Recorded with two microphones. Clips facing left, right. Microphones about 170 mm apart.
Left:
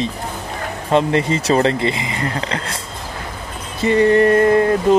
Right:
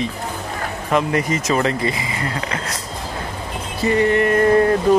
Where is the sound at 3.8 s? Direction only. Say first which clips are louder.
Left 4 dB; 30° left (ahead or behind).